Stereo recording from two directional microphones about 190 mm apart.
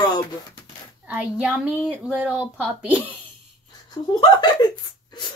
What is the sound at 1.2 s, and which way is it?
Speech, 10° right (ahead or behind).